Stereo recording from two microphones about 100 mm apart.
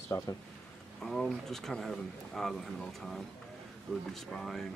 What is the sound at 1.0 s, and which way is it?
Speech, 5° left (ahead or behind).